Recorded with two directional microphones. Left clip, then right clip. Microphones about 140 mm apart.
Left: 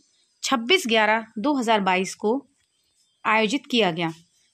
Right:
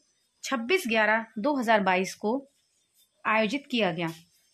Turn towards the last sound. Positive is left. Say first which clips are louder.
# left 6 dB
turn(degrees=30)  # may be behind; listen again after turning